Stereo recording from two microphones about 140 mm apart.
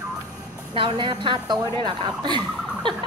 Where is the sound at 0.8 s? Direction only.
35° right (ahead or behind).